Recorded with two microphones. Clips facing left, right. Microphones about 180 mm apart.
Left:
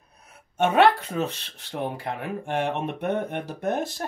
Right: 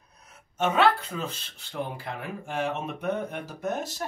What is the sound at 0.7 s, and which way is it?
Speech, 60° left (ahead or behind).